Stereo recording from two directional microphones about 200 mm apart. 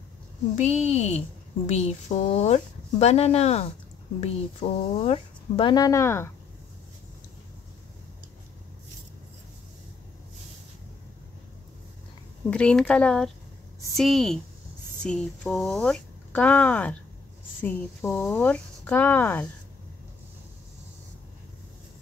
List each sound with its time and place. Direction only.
0.6 s speech: 35° left (ahead or behind); by 6.3 s 15° left (ahead or behind)
12.4 s speech: 5° left (ahead or behind)